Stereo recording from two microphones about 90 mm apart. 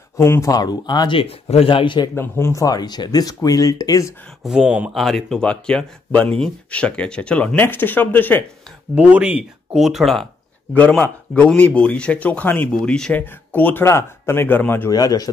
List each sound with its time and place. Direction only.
0.2 s speech: 35° left (ahead or behind)
0.6 s speech: 50° left (ahead or behind)
1.1 s speech: 85° left
2.1 s speech: 25° left (ahead or behind)
2.6 s speech: 50° left (ahead or behind)
4.4 s speech: 5° right (ahead or behind)
4.9 s speech: centre (ahead or behind); by 8.5 s 20° left (ahead or behind)
8.9 s speech: 15° right (ahead or behind)
9.8 s speech: 5° right (ahead or behind)
10.7 s speech: 15° left (ahead or behind)
12.7 s speech: 5° left (ahead or behind)
13.1 s speech: 20° left (ahead or behind)
14.9 s speech: 45° left (ahead or behind)